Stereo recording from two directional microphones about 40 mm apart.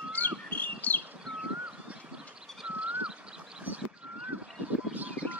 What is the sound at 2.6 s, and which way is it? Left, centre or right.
Bird, right.